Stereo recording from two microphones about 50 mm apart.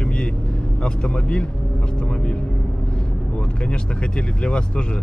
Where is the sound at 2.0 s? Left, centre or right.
Left.